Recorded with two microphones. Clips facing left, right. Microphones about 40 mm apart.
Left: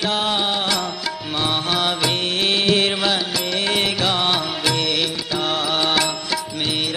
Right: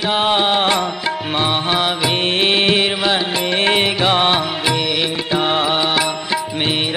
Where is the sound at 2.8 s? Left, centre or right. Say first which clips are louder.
Right 3 dB; centre.